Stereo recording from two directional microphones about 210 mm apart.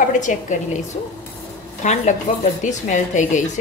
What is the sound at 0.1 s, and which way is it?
Speech, 35° left (ahead or behind).